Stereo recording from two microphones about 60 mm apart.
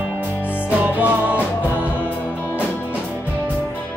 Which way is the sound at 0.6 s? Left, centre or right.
Right.